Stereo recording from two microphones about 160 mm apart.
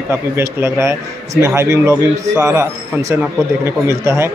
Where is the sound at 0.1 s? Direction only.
15° right (ahead or behind).